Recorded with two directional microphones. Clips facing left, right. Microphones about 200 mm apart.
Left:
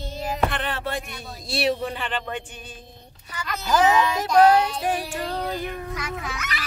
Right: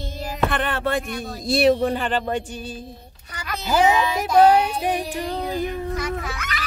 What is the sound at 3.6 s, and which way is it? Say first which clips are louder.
Speech: right 1 dB; 15° right (ahead or behind).